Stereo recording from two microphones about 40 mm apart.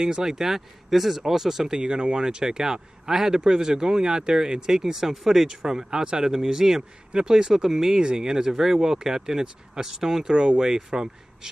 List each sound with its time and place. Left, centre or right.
0.0 s a man's voice: centre
1.9 s a man's voice: right